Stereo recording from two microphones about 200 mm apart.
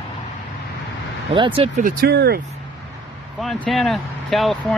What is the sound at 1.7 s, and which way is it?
Speech, 50° right (ahead or behind).